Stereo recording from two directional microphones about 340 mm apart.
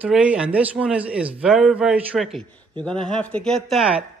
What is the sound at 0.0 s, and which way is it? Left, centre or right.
Speech, centre.